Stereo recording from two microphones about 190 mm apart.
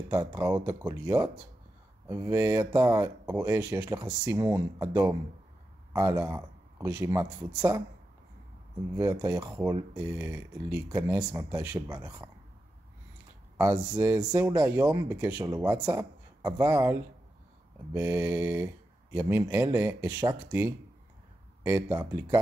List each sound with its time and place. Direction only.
0.1 s speech: 20° right (ahead or behind)
8.9 s speech: 15° right (ahead or behind)
13.6 s speech: 10° right (ahead or behind)